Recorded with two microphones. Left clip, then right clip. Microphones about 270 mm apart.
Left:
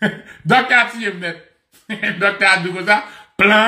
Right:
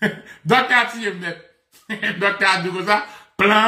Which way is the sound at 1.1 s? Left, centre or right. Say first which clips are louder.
Left 2 dB; centre.